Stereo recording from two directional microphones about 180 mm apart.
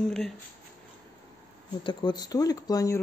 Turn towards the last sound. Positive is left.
turn(degrees=20)  # may be behind; listen again after turning